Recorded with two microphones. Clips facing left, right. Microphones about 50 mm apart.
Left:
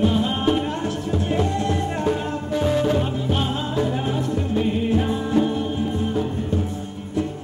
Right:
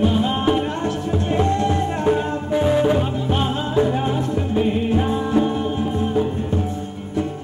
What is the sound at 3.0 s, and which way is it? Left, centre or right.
Music, centre.